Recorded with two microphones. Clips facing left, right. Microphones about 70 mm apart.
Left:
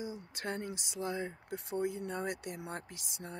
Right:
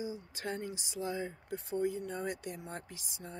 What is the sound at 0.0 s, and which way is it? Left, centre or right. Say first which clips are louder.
Speech: right 1 dB; left.